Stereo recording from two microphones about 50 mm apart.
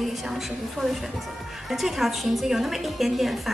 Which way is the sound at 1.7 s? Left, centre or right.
Centre.